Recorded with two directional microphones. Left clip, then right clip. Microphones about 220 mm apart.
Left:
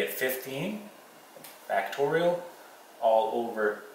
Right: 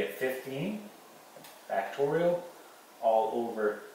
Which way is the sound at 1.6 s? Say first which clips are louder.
Left 3 dB; 15° right (ahead or behind).